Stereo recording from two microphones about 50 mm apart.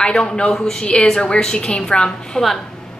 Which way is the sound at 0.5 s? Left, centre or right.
Centre.